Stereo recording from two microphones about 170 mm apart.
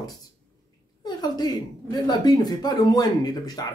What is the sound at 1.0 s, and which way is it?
Speech, 25° left (ahead or behind).